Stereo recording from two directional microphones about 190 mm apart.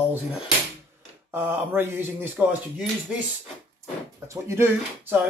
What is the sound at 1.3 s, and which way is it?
Speech, 10° right (ahead or behind).